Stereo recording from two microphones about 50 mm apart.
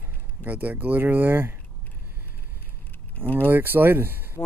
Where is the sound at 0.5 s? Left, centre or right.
Right.